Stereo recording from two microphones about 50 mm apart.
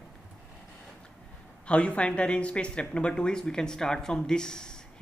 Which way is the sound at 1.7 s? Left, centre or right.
Left.